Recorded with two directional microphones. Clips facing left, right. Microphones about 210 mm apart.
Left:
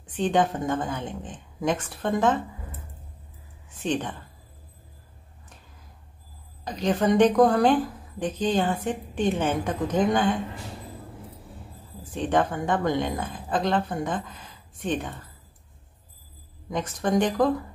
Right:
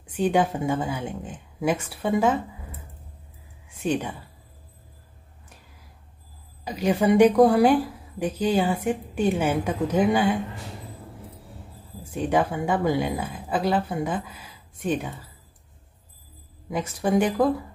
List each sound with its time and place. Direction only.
0.0 s a woman's voice: 10° right (ahead or behind)
3.6 s speech: 10° right (ahead or behind)
6.6 s a woman's voice: 10° right (ahead or behind)
12.0 s a woman's voice: 10° right (ahead or behind)
16.7 s a woman's voice: 10° right (ahead or behind)